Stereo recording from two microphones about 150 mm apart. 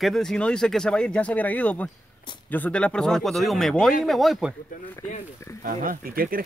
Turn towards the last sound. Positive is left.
turn(degrees=-75)  # may be behind; listen again after turning